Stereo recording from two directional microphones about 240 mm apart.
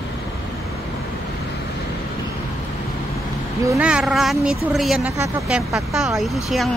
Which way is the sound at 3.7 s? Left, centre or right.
Centre.